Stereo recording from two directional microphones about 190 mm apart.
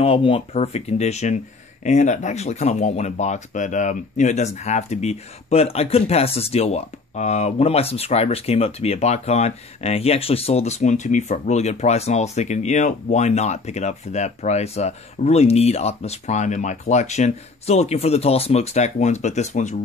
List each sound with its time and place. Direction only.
0.0 s speech: 30° left (ahead or behind)